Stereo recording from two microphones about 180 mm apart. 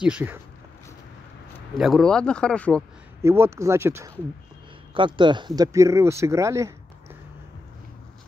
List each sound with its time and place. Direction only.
0.0 s speech: 10° right (ahead or behind)
1.8 s speech: centre (ahead or behind)
3.2 s speech: 15° right (ahead or behind)
4.9 s speech: 25° right (ahead or behind)